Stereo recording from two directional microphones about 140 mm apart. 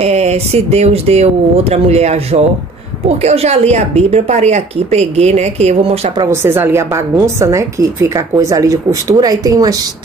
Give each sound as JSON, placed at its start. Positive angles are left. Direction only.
{"t": 0.0, "sound": "a woman's voice", "side_deg": -50}
{"t": 6.1, "sound": "a woman's voice", "side_deg": -20}